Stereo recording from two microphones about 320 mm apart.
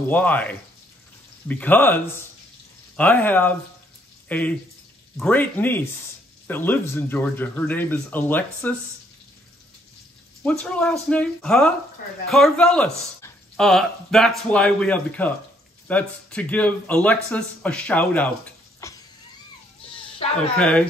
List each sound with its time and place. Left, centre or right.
0.1 s speech: centre
3.0 s speech: centre
10.4 s speech: centre
20.2 s a sound: centre
20.5 s speech: centre